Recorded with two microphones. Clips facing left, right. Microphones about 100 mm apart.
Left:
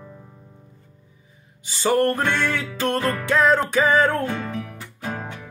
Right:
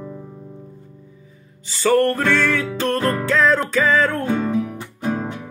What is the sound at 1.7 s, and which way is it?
Music, 20° left (ahead or behind).